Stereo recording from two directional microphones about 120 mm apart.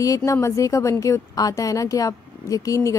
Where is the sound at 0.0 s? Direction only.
25° left (ahead or behind).